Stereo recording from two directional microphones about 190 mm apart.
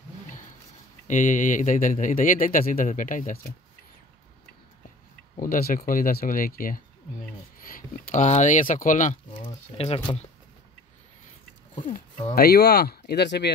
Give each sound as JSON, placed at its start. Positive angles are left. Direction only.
{"t": 1.0, "sound": "speech", "side_deg": 40}
{"t": 5.4, "sound": "speech", "side_deg": 50}
{"t": 9.4, "sound": "speech", "side_deg": 30}
{"t": 11.9, "sound": "speech", "side_deg": 45}